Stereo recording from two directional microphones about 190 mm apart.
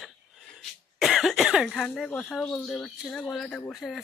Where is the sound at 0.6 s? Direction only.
Centre (ahead or behind).